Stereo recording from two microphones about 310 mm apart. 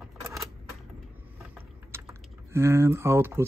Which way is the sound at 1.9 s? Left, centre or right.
Centre.